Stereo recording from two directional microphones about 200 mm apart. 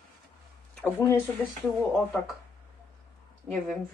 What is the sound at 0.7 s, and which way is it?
Speech, 10° left (ahead or behind).